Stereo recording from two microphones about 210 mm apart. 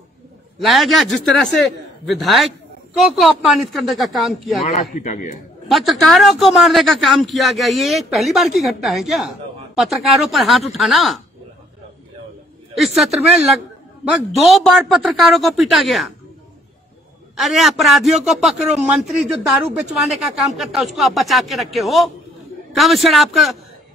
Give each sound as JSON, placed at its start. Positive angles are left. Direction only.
{"t": 0.6, "sound": "a man's voice", "side_deg": 0}
{"t": 4.9, "sound": "a man's voice", "side_deg": 35}
{"t": 5.7, "sound": "a man's voice", "side_deg": 0}
{"t": 12.7, "sound": "a man's voice", "side_deg": 0}
{"t": 17.4, "sound": "a man's voice", "side_deg": 0}